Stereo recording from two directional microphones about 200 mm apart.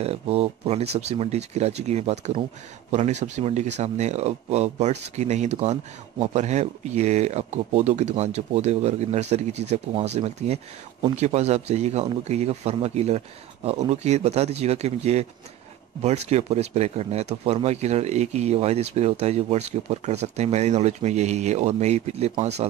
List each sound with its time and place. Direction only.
0.0 s speech: 30° right (ahead or behind)